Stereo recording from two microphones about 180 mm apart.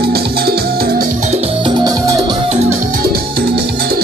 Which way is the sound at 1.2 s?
35° right (ahead or behind).